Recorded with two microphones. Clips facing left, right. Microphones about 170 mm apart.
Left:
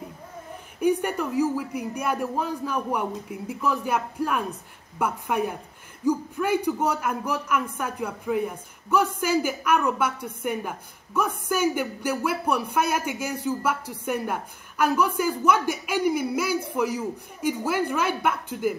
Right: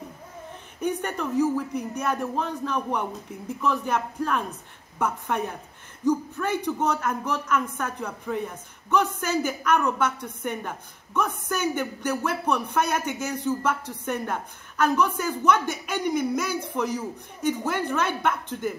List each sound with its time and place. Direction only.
0.7 s a man's voice: 10° left (ahead or behind)